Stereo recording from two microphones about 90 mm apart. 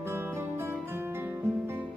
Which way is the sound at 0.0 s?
25° right (ahead or behind).